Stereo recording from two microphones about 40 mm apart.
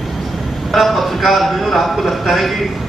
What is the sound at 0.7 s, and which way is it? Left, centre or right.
A man's voice, centre.